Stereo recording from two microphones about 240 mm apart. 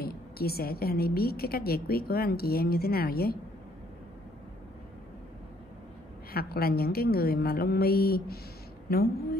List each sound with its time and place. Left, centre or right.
0.0 s a woman's voice: left
6.3 s a woman's voice: left